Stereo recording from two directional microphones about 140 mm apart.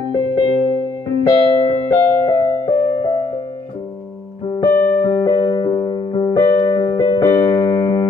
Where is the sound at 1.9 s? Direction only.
20° left (ahead or behind).